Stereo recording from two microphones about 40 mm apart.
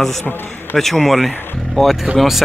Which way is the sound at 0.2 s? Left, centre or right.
Left.